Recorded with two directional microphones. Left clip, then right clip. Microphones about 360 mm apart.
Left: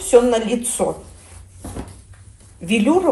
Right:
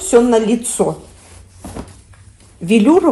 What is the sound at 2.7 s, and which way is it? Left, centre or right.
Speech, right.